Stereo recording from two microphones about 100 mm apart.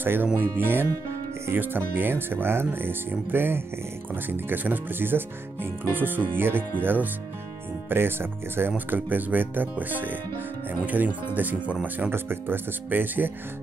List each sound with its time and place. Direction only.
0.0 s speech: 20° right (ahead or behind)